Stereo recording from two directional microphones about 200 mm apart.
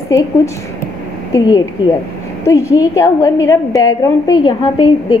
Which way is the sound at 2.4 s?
15° left (ahead or behind).